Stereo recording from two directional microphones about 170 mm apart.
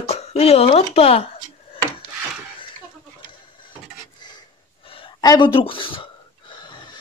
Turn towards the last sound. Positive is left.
turn(degrees=25)  # may be behind; listen again after turning